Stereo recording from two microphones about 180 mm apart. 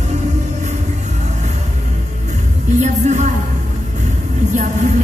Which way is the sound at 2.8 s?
40° right (ahead or behind).